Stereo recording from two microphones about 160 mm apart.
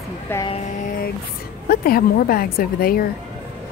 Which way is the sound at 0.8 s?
60° left (ahead or behind).